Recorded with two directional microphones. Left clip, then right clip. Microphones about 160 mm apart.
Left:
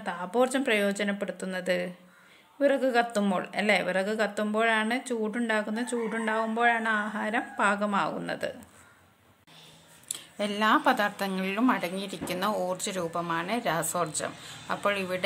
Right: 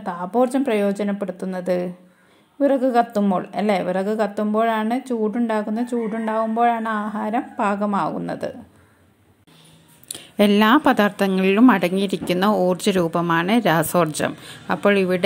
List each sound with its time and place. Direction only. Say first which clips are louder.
0.0 s a woman's voice: right 6 dB; 15° right (ahead or behind)
10.0 s speech: right 13 dB; 45° right (ahead or behind)